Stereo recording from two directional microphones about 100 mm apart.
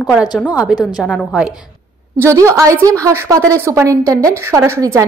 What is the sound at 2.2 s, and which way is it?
Speech, 30° right (ahead or behind).